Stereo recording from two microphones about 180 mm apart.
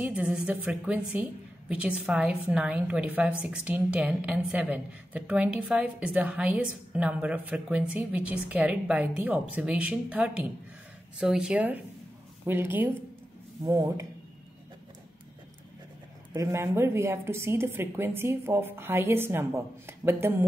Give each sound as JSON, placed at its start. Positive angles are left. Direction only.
{"t": 0.0, "sound": "a woman's voice", "side_deg": -5}
{"t": 16.3, "sound": "a woman's voice", "side_deg": -15}